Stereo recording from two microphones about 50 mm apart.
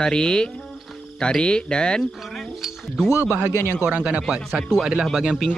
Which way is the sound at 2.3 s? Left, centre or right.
Centre.